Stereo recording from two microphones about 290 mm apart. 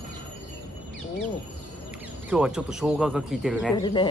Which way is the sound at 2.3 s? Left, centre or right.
Centre.